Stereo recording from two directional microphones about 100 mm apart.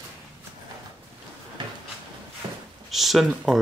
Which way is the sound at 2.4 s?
45° right (ahead or behind).